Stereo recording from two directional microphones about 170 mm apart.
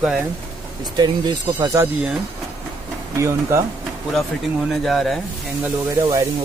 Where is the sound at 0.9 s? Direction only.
25° right (ahead or behind).